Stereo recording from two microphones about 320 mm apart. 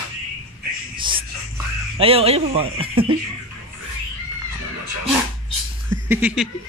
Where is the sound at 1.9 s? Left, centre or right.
Centre.